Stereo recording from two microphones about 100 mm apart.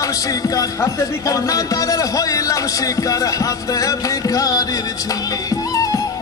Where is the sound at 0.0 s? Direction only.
35° left (ahead or behind).